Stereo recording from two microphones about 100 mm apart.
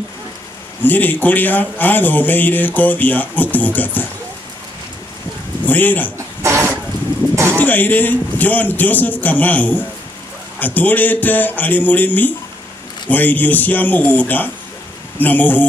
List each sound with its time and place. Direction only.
0.8 s a man's voice: 20° left (ahead or behind)
5.7 s a man's voice: 20° left (ahead or behind)
6.1 s a sound: 30° right (ahead or behind)
7.5 s a man's voice: 20° left (ahead or behind)